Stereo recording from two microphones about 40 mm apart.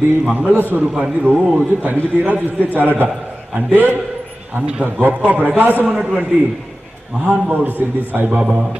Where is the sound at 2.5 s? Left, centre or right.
Right.